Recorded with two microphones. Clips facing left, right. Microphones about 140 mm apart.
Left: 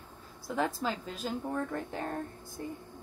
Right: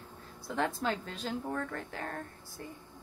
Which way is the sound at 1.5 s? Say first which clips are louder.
Left 3 dB; 20° left (ahead or behind).